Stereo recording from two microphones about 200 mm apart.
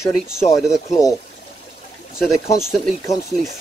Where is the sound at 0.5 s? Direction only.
Centre (ahead or behind).